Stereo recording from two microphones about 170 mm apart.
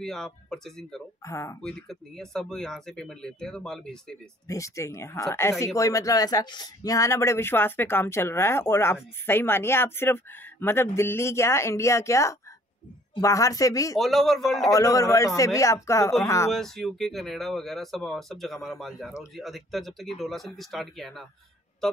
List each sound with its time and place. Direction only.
0.0 s speech: 5° left (ahead or behind)
1.2 s a man's voice: 20° left (ahead or behind)
1.6 s speech: 5° left (ahead or behind)
4.5 s a man's voice: 20° left (ahead or behind)
13.9 s speech: centre (ahead or behind)
14.7 s a man's voice: 20° left (ahead or behind)
16.5 s speech: centre (ahead or behind)